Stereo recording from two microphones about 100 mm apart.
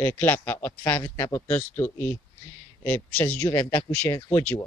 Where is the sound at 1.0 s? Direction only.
35° left (ahead or behind).